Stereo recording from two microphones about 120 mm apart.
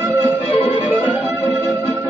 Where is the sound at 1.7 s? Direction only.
25° right (ahead or behind).